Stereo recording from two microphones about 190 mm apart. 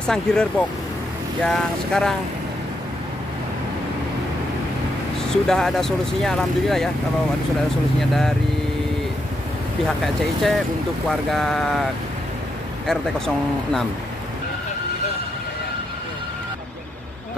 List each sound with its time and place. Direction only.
0.0 s speech: 5° left (ahead or behind)
5.3 s speech: centre (ahead or behind)
8.0 s speech: centre (ahead or behind)
10.0 s speech: centre (ahead or behind)